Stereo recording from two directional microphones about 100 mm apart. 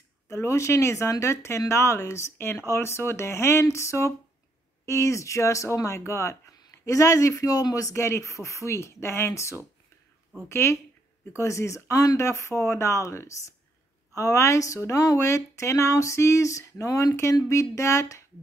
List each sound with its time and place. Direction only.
0.3 s speech: 30° left (ahead or behind)